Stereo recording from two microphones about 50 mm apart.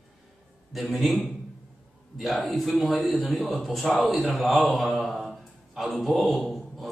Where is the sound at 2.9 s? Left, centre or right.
Left.